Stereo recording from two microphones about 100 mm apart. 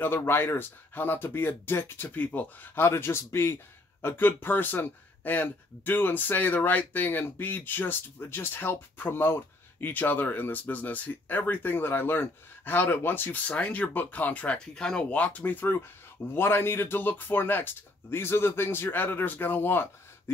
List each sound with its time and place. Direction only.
0.0 s speech: 20° left (ahead or behind)